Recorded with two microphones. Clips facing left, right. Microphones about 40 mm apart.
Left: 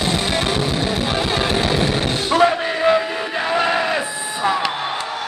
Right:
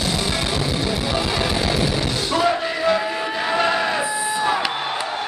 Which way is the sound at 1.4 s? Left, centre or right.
Left.